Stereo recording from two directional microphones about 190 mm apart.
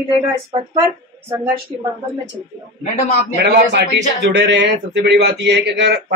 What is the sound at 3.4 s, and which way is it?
A man's voice, 65° right (ahead or behind).